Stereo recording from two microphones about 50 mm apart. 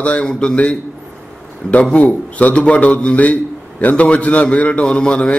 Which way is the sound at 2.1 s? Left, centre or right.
Left.